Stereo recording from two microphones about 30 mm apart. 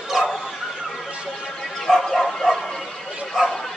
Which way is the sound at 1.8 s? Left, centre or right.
Centre.